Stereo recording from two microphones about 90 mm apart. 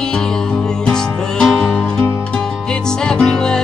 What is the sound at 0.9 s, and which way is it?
Music, 10° left (ahead or behind).